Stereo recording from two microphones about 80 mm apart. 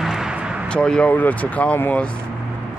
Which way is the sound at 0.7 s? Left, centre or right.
Centre.